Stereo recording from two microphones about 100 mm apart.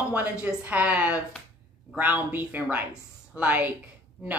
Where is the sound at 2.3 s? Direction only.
15° right (ahead or behind).